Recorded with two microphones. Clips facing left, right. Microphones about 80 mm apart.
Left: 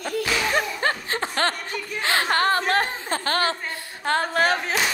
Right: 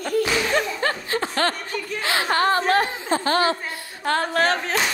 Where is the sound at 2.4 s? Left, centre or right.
Right.